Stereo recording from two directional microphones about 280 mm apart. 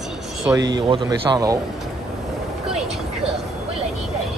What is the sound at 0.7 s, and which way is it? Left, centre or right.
Speech, centre.